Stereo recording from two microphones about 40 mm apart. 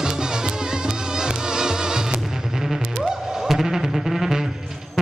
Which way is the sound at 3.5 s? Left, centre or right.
Centre.